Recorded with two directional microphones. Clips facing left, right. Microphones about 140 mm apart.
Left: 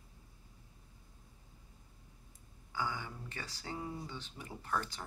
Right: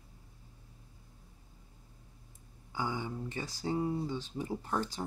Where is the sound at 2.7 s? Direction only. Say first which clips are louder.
Right 4 dB; 20° right (ahead or behind).